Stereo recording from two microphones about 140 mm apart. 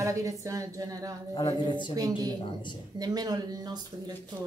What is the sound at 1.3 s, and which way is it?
Speech, 35° left (ahead or behind).